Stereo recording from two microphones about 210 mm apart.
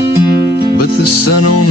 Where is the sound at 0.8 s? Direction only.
90° left.